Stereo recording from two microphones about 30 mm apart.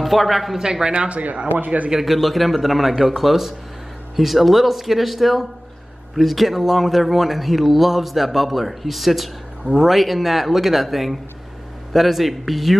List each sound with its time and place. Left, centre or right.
0.0 s speech: centre
0.6 s speech: right
0.9 s speech: right
2.0 s speech: centre